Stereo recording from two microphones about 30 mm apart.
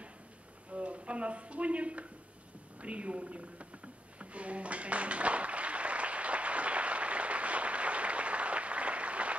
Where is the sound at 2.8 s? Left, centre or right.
Right.